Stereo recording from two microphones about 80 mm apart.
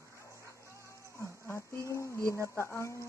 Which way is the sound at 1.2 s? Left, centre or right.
Left.